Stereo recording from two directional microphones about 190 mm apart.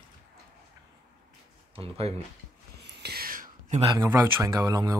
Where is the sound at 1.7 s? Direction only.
30° right (ahead or behind).